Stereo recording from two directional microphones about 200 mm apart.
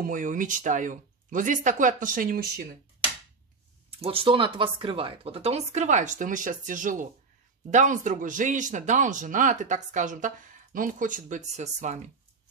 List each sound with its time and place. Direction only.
0.0 s speech: 40° right (ahead or behind)
4.0 s speech: 25° right (ahead or behind)